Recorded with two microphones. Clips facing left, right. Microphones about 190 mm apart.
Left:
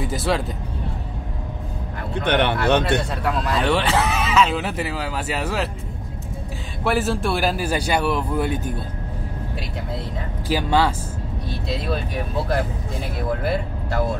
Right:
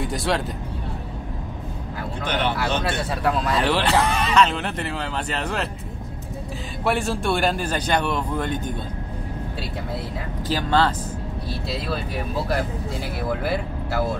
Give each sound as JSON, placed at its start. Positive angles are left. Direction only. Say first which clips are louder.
{"t": 0.0, "sound": "speech", "louder": "left 1 dB", "side_deg": 0}
{"t": 2.2, "sound": "speech", "louder": "left 5 dB", "side_deg": 65}
{"t": 3.1, "sound": "speech", "louder": "right 1 dB", "side_deg": 0}
{"t": 6.8, "sound": "speech", "louder": "left 2 dB", "side_deg": 0}
{"t": 10.5, "sound": "speech", "louder": "left 1 dB", "side_deg": 10}
{"t": 13.3, "sound": "speech", "louder": "left 2 dB", "side_deg": -5}